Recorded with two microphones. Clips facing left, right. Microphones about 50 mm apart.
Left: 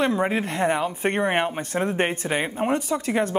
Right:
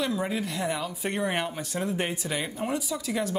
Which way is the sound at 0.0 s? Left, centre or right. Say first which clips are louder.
Left 6 dB; left.